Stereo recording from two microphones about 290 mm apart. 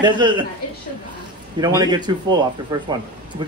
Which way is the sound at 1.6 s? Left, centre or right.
Centre.